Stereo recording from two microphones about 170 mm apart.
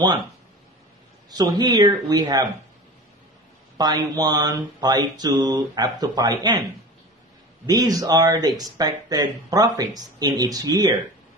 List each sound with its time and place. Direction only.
1.6 s speech: 25° right (ahead or behind)
3.7 s speech: 25° right (ahead or behind)
7.6 s speech: 25° right (ahead or behind)